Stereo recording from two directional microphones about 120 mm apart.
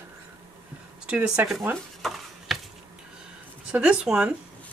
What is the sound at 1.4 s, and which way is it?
Speech, 15° right (ahead or behind).